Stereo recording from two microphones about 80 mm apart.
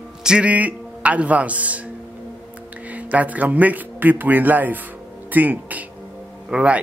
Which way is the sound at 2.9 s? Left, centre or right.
Centre.